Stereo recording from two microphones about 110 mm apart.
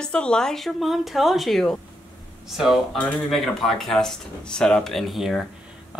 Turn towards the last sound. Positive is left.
turn(degrees=0)  # may be behind; listen again after turning